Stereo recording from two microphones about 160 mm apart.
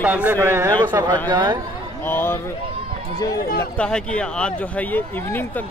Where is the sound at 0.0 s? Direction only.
10° right (ahead or behind); by 1.6 s 30° right (ahead or behind).